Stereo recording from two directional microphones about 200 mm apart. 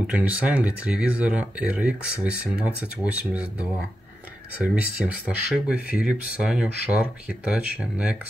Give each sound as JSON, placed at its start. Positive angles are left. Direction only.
{"t": 0.0, "sound": "speech", "side_deg": -5}
{"t": 4.7, "sound": "speech", "side_deg": -5}